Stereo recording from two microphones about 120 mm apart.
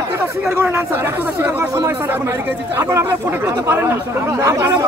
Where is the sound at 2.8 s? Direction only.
25° right (ahead or behind).